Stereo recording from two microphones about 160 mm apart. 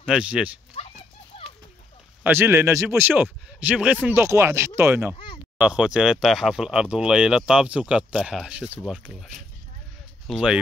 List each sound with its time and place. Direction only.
0.0 s speech: 5° right (ahead or behind)
0.8 s clip-clop: 40° left (ahead or behind)
2.2 s speech: 15° right (ahead or behind)
10.2 s speech: 5° right (ahead or behind)